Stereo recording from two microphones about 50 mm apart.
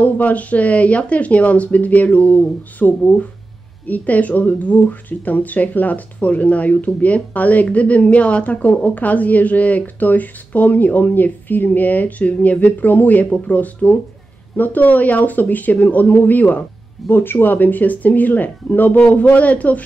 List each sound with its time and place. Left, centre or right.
0.0 s a woman's voice: left
17.1 s a woman's voice: left